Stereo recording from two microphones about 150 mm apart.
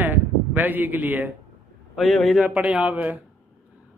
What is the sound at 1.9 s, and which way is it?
Speech, centre (ahead or behind).